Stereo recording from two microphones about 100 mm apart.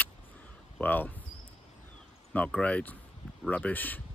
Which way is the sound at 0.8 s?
15° left (ahead or behind).